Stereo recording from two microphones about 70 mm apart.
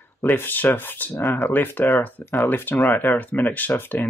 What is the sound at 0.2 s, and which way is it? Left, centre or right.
Speech, left.